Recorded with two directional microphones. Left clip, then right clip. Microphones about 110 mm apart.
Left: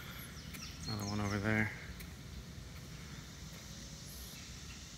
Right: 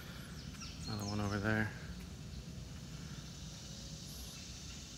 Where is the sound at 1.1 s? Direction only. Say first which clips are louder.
Left 1 dB; 10° right (ahead or behind).